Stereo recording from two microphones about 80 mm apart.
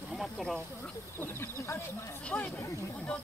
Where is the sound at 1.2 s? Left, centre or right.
Left.